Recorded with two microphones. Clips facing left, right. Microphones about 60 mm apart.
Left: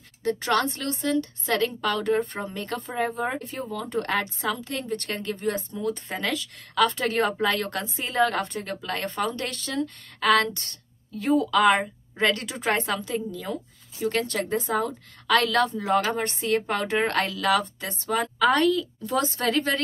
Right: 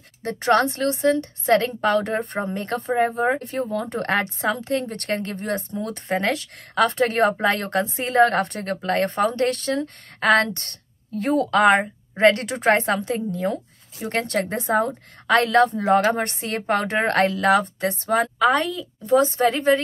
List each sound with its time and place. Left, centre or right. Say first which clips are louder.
0.2 s a woman's voice: right 5 dB; right
18.4 s a woman's voice: right 1 dB; right